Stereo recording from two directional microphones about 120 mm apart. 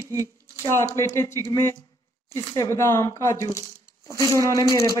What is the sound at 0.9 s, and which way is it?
Speech, 25° left (ahead or behind).